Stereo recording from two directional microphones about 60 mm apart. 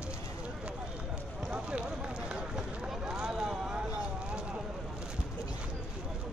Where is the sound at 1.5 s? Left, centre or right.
Centre.